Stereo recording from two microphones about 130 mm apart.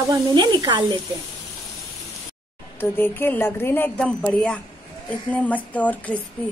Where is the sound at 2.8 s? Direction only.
15° left (ahead or behind).